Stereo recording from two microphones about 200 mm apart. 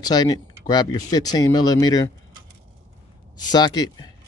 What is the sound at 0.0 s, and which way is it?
Speech, 20° left (ahead or behind).